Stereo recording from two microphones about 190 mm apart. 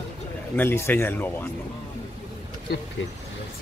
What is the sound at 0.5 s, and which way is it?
Speech, 10° left (ahead or behind).